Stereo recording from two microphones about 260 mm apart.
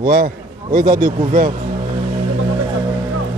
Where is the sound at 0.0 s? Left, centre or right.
Right.